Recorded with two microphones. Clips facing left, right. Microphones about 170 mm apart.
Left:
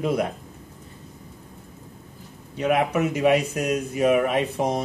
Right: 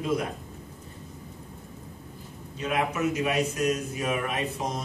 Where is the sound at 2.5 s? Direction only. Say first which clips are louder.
Left 6 dB; 65° left (ahead or behind).